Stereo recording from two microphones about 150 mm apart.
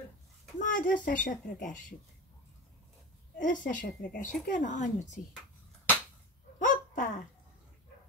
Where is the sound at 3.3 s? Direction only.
60° left (ahead or behind).